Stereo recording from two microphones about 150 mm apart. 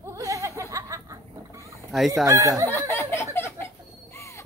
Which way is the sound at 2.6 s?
15° left (ahead or behind).